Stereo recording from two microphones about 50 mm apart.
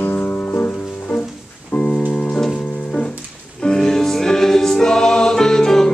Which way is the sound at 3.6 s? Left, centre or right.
Centre.